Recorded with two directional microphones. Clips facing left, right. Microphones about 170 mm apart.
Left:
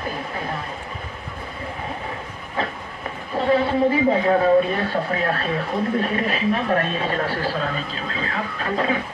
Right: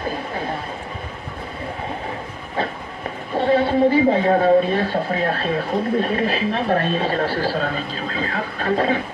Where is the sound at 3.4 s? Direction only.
30° right (ahead or behind).